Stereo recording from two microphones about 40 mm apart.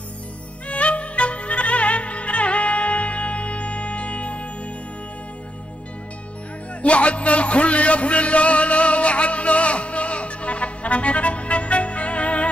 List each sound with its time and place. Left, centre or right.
0.7 s music: left
6.8 s music: left